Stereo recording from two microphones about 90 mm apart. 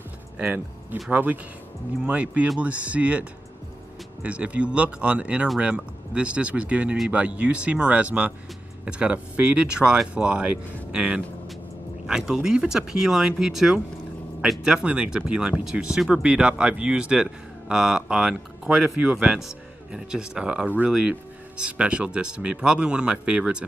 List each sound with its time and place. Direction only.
1.1 s speech: 20° right (ahead or behind)